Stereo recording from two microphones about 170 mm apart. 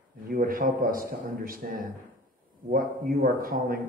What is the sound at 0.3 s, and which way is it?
Speech, 55° right (ahead or behind).